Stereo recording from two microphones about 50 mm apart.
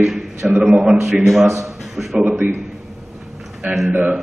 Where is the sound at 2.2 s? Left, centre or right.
Right.